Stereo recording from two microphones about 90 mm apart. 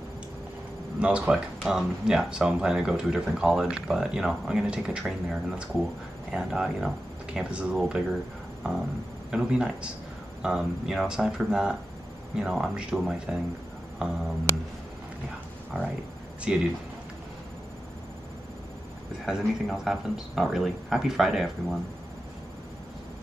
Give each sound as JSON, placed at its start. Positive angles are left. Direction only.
{"t": 0.9, "sound": "speech", "side_deg": -15}
{"t": 9.3, "sound": "speech", "side_deg": -10}
{"t": 15.7, "sound": "speech", "side_deg": -15}
{"t": 19.2, "sound": "speech", "side_deg": -5}